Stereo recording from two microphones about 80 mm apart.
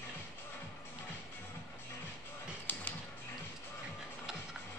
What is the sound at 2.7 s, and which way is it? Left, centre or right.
Music, left.